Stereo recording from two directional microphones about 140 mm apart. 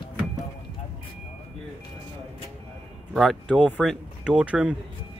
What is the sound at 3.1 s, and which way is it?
Speech, centre (ahead or behind).